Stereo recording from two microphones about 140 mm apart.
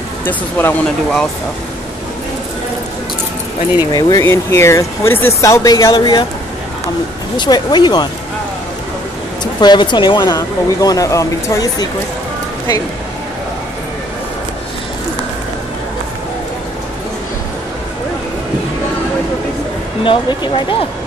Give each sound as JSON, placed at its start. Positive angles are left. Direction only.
{"t": 0.2, "sound": "speech", "side_deg": 15}
{"t": 3.9, "sound": "speech", "side_deg": 20}
{"t": 7.3, "sound": "speech", "side_deg": 30}
{"t": 9.4, "sound": "speech", "side_deg": 30}
{"t": 20.0, "sound": "speech", "side_deg": 35}